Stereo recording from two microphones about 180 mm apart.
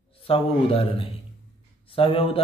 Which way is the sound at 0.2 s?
30° left (ahead or behind).